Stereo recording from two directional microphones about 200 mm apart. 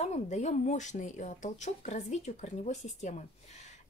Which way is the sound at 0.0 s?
35° left (ahead or behind).